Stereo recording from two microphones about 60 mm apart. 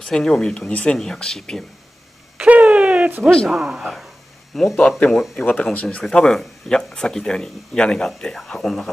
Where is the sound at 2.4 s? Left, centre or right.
Right.